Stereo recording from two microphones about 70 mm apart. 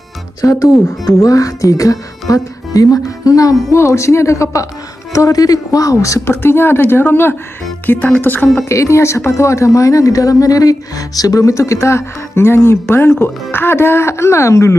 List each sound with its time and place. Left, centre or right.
0.4 s speech: left
3.7 s speech: left
6.2 s speech: left
8.6 s speech: left